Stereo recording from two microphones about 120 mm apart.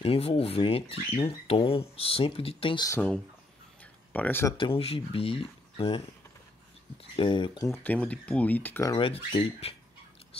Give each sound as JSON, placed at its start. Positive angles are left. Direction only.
{"t": 0.0, "sound": "speech", "side_deg": 50}
{"t": 4.1, "sound": "speech", "side_deg": 15}
{"t": 4.6, "sound": "speech", "side_deg": 50}
{"t": 7.2, "sound": "speech", "side_deg": 45}
{"t": 7.6, "sound": "speech", "side_deg": 15}
{"t": 8.9, "sound": "speech", "side_deg": 50}